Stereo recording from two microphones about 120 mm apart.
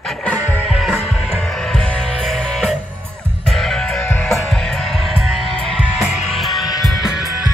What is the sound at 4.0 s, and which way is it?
Music, 15° left (ahead or behind).